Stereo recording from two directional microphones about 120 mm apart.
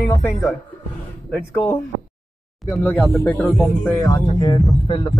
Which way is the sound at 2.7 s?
20° left (ahead or behind).